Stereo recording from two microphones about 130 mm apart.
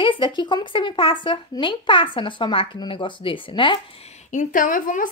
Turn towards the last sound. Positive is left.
turn(degrees=90)